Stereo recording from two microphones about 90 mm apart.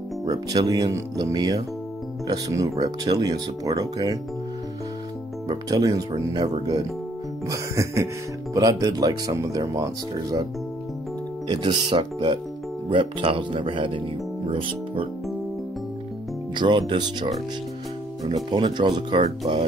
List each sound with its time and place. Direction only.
0.2 s speech: 45° right (ahead or behind)
2.2 s music: 45° right (ahead or behind)
2.8 s speech: 45° right (ahead or behind)
5.5 s speech: 45° right (ahead or behind)
7.4 s music: 35° right (ahead or behind)
8.5 s speech: 40° right (ahead or behind)
11.4 s speech: 60° right (ahead or behind)
12.9 s speech: 85° right
16.5 s speech: 60° right (ahead or behind)